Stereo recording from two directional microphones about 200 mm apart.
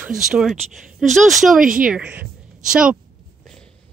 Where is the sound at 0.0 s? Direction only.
5° right (ahead or behind).